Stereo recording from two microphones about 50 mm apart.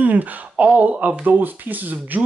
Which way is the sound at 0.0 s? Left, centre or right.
Right.